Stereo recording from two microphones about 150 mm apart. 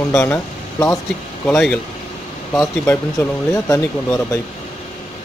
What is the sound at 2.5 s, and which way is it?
Speech, 15° left (ahead or behind).